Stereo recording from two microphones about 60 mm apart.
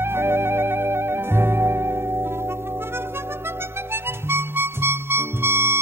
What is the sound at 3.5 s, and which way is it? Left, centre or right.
Harmonica, right.